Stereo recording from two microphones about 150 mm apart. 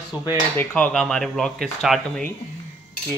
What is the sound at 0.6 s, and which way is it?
Speech, 10° left (ahead or behind).